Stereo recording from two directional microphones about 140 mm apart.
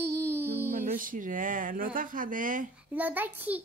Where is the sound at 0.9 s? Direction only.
75° right (ahead or behind).